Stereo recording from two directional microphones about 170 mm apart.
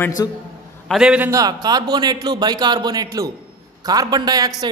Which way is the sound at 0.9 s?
5° right (ahead or behind).